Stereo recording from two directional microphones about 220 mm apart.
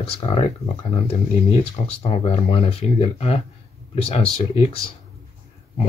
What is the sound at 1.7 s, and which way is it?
Speech, 30° left (ahead or behind).